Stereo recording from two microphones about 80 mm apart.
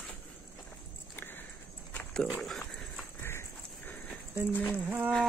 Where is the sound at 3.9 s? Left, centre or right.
Left.